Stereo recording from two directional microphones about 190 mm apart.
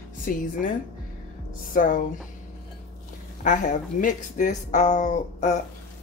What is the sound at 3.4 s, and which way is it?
Speech, 45° left (ahead or behind).